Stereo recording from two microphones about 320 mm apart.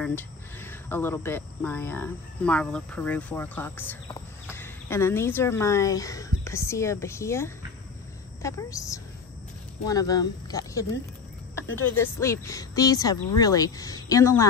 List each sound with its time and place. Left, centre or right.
0.0 s speech: centre
11.9 s speech: centre